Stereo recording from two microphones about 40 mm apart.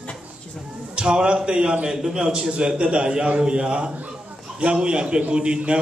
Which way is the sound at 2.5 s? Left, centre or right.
Right.